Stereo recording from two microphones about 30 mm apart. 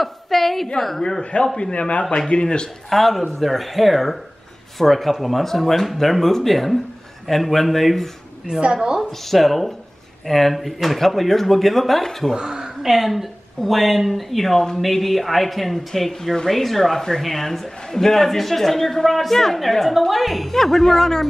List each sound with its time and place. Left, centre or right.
0.0 s a sound: centre
0.7 s speech: centre
1.6 s a man's voice: left
2.1 s speech: left
2.9 s speech: centre
8.5 s speech: right
9.2 s speech: centre
12.4 s speech: right
12.9 s speech: centre
20.5 s speech: centre